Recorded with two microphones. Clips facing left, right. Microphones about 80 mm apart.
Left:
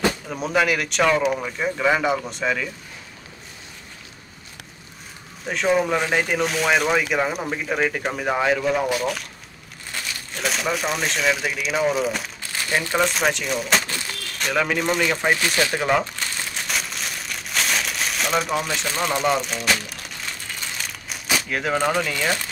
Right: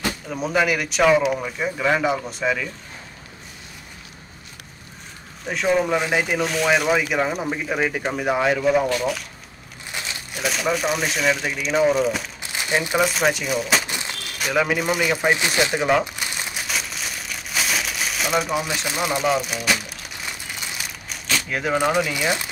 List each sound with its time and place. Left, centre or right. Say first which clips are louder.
0.3 s speech: right 3 dB; centre
5.5 s speech: even; centre
9.9 s crumpling: right 1 dB; centre
10.3 s speech: right 2 dB; centre
12.4 s crumpling: right 1 dB; centre
13.0 s speech: right 1 dB; centre
13.8 s a sound: right 1 dB; centre
14.4 s a man's voice: right 1 dB; centre
15.3 s speech: right 1 dB; centre
15.8 s crumpling: right 1 dB; centre
16.6 s crumpling: even; centre
21.5 s speech: right 2 dB; centre
21.7 s a man's voice: right 2 dB; centre